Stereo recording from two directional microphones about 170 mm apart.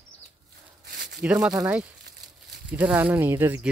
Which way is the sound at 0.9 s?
90° right.